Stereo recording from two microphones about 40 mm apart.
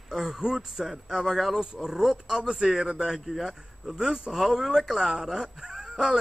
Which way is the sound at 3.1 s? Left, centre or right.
Centre.